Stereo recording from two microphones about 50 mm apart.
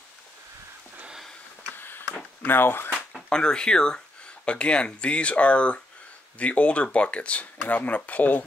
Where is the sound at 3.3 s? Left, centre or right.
Centre; by 8.4 s left.